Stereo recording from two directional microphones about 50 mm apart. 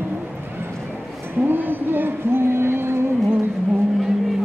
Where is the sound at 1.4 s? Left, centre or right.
Right.